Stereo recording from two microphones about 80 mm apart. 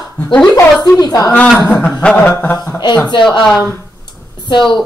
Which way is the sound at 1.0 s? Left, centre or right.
Left.